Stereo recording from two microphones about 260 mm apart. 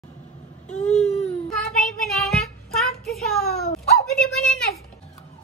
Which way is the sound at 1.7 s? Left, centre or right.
Centre.